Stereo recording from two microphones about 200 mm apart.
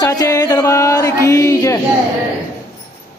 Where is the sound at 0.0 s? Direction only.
15° left (ahead or behind).